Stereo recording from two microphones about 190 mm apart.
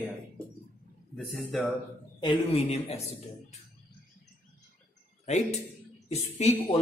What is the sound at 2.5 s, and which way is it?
Speech, 30° left (ahead or behind).